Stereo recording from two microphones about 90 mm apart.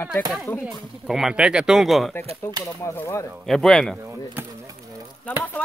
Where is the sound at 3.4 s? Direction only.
5° left (ahead or behind).